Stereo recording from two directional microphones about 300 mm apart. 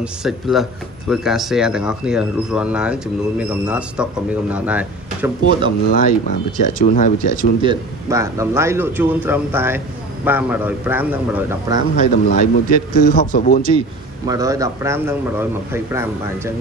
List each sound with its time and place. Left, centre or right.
0.0 s speech: centre
5.6 s a man's voice: left
7.6 s a man's voice: centre
11.9 s a man's voice: left
14.2 s a man's voice: centre